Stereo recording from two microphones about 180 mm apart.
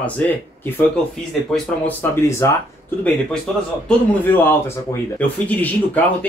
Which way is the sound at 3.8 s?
10° left (ahead or behind).